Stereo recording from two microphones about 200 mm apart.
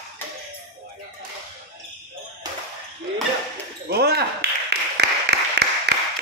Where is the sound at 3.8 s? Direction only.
55° right (ahead or behind).